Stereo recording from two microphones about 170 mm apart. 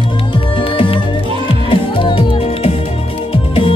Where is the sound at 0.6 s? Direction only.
30° left (ahead or behind).